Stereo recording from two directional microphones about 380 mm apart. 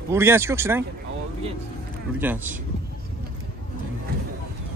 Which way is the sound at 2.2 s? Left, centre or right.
Centre.